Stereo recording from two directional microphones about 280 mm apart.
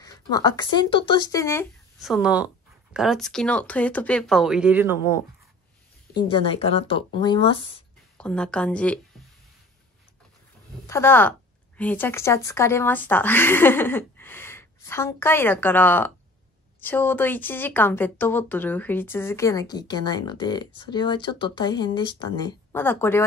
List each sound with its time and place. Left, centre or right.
0.0 s speech: centre
6.1 s speech: centre
8.2 s speech: centre
10.9 s a woman's voice: centre